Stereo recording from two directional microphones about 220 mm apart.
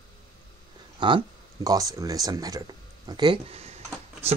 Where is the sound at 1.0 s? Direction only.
20° right (ahead or behind).